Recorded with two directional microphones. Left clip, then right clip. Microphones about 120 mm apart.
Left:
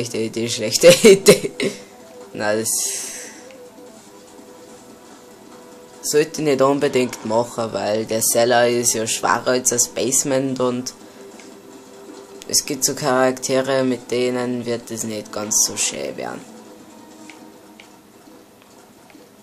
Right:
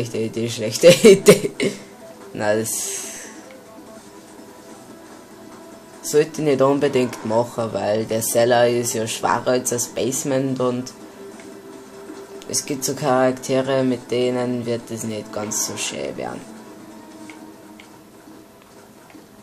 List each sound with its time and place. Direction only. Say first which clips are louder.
0.0 s speech: left 1 dB; 25° left (ahead or behind)
6.0 s speech: even; 25° left (ahead or behind)
12.4 s speech: left 4 dB; 25° left (ahead or behind)